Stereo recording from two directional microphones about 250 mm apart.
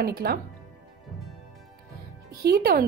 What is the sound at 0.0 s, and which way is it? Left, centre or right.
Speech, right.